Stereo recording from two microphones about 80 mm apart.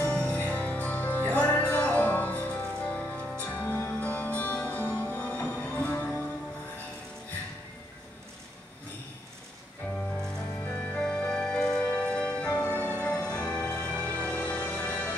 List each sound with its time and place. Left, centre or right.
0.1 s music: centre
9.9 s music: centre